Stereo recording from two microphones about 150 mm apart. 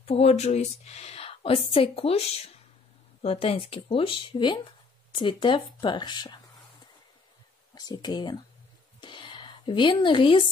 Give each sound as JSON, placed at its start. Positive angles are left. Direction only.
{"t": 0.0, "sound": "a woman's voice", "side_deg": 45}
{"t": 7.7, "sound": "speech", "side_deg": 30}
{"t": 9.0, "sound": "a sound", "side_deg": 30}